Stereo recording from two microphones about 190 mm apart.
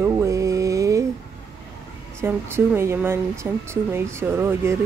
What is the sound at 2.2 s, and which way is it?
A woman's voice, 15° right (ahead or behind).